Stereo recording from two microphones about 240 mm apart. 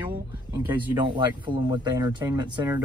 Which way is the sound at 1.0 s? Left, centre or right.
Centre.